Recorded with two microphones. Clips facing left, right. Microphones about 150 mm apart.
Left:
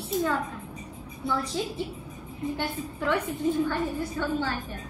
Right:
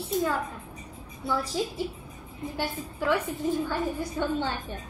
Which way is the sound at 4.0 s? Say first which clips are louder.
Even; 20° right (ahead or behind).